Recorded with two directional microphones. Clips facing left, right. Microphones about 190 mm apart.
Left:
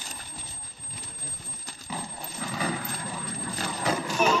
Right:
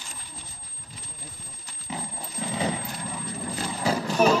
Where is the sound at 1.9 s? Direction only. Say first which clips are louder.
Right 2 dB; 20° right (ahead or behind).